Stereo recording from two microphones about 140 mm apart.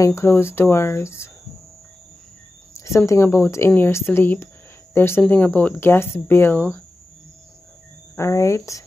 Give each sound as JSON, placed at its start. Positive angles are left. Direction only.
{"t": 0.0, "sound": "speech", "side_deg": 20}
{"t": 3.1, "sound": "speech", "side_deg": 20}
{"t": 8.2, "sound": "speech", "side_deg": 20}